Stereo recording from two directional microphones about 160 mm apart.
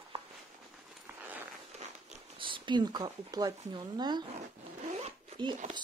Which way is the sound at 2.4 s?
30° right (ahead or behind).